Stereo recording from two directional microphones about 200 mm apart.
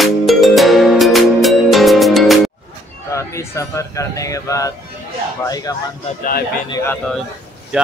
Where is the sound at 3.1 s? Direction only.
15° left (ahead or behind).